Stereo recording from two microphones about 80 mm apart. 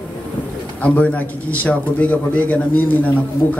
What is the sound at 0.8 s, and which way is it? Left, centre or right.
A man's voice, centre.